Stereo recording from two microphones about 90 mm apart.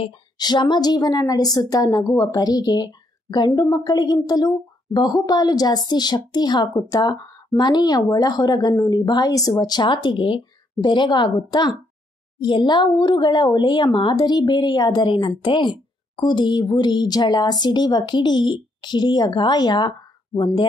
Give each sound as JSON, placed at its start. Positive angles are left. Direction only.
{"t": 0.4, "sound": "a woman's voice", "side_deg": 50}